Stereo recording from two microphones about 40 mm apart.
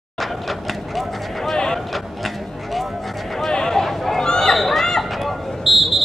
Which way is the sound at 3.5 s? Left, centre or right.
Centre.